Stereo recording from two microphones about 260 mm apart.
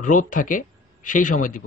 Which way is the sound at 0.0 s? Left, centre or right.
Left.